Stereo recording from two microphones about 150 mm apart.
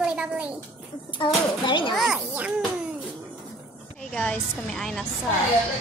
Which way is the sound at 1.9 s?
5° right (ahead or behind).